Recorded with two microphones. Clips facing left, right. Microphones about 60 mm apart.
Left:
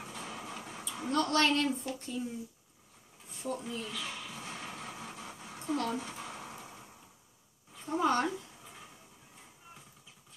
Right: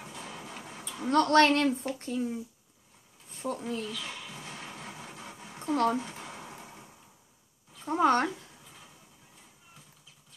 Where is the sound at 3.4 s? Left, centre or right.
Right.